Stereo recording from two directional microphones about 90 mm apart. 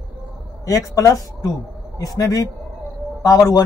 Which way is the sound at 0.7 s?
40° left (ahead or behind).